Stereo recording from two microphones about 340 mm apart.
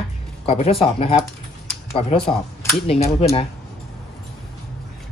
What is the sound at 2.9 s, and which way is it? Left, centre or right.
Speech, centre.